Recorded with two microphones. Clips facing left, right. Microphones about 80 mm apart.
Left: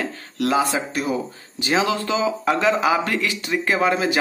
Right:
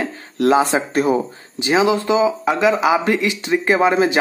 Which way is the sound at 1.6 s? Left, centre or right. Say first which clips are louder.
Right 5 dB; centre.